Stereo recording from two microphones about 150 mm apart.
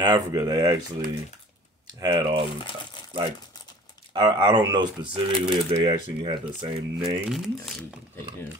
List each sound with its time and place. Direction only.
0.0 s speech: 25° right (ahead or behind)
2.0 s speech: 25° right (ahead or behind)
4.1 s speech: 35° right (ahead or behind)
7.2 s speech: centre (ahead or behind)